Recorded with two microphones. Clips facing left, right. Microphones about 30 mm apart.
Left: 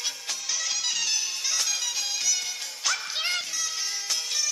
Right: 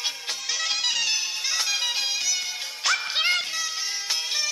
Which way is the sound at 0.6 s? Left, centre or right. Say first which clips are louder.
Right 5 dB; right.